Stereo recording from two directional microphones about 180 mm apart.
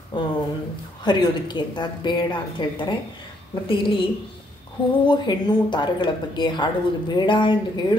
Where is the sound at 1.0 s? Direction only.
25° left (ahead or behind).